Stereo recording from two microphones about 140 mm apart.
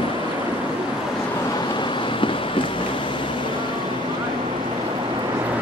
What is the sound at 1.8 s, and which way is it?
Vehicle, 35° left (ahead or behind).